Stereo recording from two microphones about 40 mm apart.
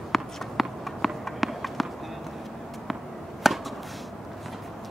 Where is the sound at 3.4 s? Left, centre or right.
Centre.